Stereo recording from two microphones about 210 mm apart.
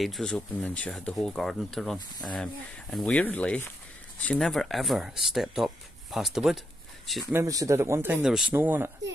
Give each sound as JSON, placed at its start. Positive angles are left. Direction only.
{"t": 0.0, "sound": "speech", "side_deg": 0}
{"t": 2.0, "sound": "speech", "side_deg": 20}
{"t": 2.9, "sound": "speech", "side_deg": 5}
{"t": 7.3, "sound": "speech", "side_deg": -15}